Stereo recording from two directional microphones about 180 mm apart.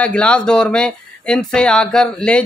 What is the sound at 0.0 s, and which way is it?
Speech, 5° left (ahead or behind).